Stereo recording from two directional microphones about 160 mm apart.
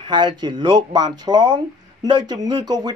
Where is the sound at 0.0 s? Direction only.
30° right (ahead or behind).